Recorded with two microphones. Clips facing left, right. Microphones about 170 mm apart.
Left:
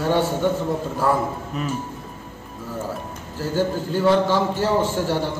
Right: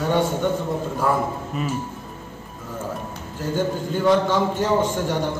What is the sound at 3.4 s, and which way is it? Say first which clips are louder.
A man's voice: left 1 dB; 5° left (ahead or behind).